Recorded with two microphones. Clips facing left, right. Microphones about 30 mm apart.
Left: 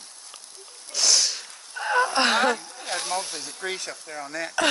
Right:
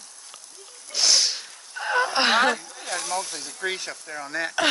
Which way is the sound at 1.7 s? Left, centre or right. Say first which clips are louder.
Left 1 dB; centre.